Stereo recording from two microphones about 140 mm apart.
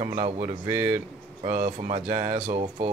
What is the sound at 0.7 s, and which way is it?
Speech, 35° right (ahead or behind).